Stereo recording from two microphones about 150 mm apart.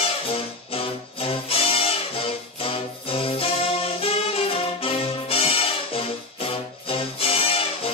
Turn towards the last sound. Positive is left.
turn(degrees=40)  # may be behind; listen again after turning